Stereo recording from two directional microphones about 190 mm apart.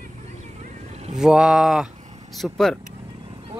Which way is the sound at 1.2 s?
5° right (ahead or behind).